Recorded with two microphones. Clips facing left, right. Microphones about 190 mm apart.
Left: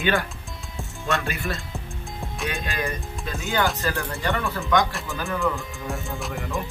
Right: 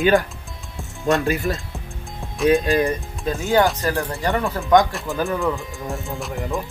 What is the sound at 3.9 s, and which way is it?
Speech, 35° right (ahead or behind).